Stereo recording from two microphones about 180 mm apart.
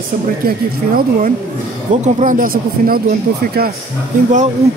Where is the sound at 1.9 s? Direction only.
45° right (ahead or behind).